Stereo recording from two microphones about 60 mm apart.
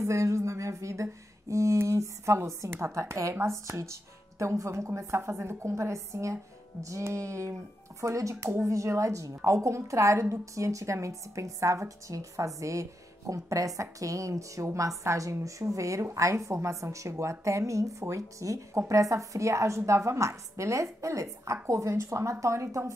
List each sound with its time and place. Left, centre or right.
0.0 s a woman's voice: right